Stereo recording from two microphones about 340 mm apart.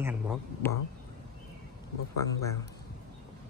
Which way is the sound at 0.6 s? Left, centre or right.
Centre.